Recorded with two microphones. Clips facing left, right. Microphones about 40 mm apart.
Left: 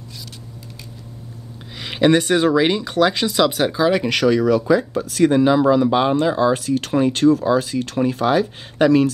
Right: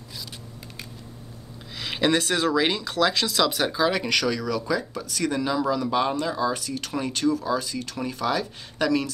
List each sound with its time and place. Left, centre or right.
1.8 s speech: centre; by 9.1 s left